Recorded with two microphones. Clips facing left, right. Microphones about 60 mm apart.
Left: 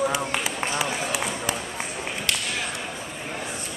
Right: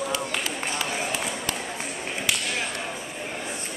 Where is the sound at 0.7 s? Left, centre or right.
Centre.